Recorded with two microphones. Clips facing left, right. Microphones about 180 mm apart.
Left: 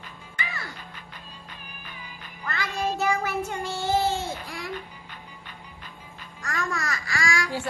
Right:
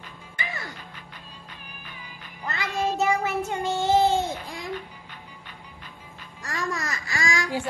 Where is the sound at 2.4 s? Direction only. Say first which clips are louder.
Right 1 dB; 20° right (ahead or behind).